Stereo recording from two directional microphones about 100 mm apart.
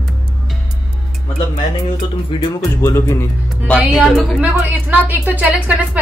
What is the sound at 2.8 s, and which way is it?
Speech, 25° left (ahead or behind).